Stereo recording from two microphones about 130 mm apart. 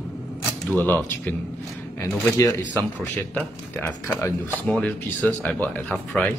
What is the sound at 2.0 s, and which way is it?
Speech, 25° left (ahead or behind).